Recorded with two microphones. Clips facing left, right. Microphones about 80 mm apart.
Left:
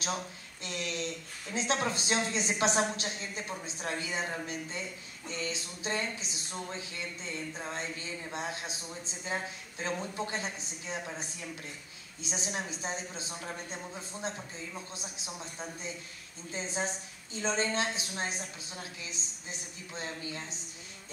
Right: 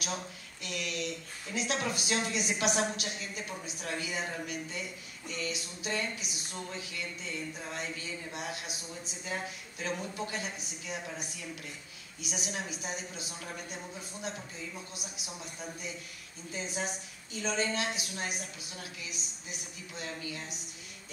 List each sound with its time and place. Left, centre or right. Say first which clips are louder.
0.7 s speech: even; left